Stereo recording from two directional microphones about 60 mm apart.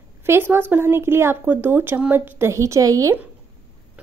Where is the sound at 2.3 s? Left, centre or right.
Right.